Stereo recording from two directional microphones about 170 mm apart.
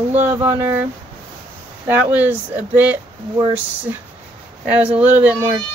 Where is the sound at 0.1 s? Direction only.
45° right (ahead or behind).